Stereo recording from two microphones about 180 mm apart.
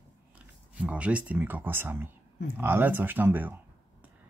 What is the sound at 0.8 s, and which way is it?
Speech, 5° right (ahead or behind).